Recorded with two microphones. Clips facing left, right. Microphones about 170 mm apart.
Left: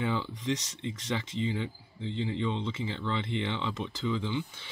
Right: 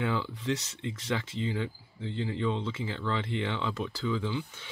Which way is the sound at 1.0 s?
10° right (ahead or behind).